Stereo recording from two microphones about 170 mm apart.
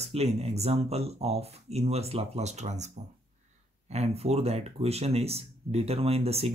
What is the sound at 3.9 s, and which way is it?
Speech, 40° right (ahead or behind).